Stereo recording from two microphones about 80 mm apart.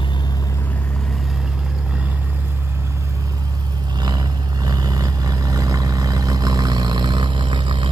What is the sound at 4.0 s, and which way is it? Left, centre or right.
Vehicle, right.